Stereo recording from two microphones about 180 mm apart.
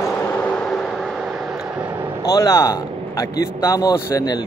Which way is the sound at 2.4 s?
20° left (ahead or behind).